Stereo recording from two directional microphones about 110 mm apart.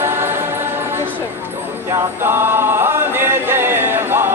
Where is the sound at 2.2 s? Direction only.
20° right (ahead or behind).